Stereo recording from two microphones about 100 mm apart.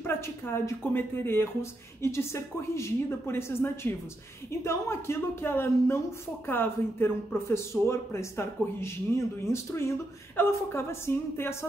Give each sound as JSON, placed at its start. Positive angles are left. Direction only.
{"t": 0.0, "sound": "speech", "side_deg": 25}